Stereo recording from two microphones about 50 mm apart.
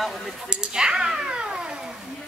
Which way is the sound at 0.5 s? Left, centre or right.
Centre.